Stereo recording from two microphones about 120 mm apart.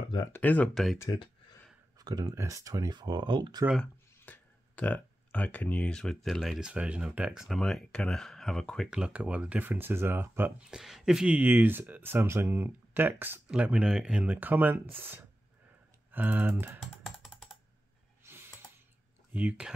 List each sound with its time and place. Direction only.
0.3 s speech: 15° left (ahead or behind)
0.9 s speech: 25° left (ahead or behind)
2.0 s speech: 35° right (ahead or behind)
3.7 s speech: 10° left (ahead or behind)
9.0 s speech: 10° right (ahead or behind)
10.7 s speech: 5° right (ahead or behind)
16.8 s computer keyboard: centre (ahead or behind)
18.3 s a sound: 25° right (ahead or behind)
19.3 s speech: 10° right (ahead or behind)